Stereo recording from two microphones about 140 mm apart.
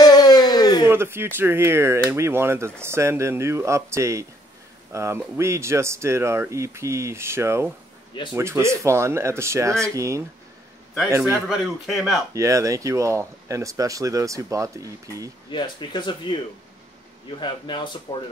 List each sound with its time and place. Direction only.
0.0 s a sound: 30° left (ahead or behind)
0.8 s speech: 15° right (ahead or behind)
11.4 s speech: 5° right (ahead or behind)
12.4 s speech: 20° right (ahead or behind)
15.5 s speech: 35° left (ahead or behind)